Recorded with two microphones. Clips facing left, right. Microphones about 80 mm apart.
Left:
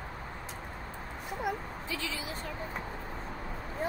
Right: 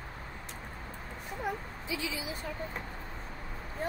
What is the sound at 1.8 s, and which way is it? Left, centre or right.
Speech, centre.